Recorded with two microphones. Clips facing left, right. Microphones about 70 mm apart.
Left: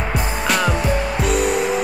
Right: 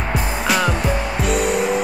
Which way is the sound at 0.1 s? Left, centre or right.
Centre.